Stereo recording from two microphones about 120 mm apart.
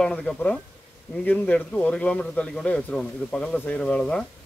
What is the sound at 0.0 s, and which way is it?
A man's voice, 5° left (ahead or behind).